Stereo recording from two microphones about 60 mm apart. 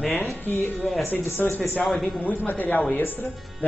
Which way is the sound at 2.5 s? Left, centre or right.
Left.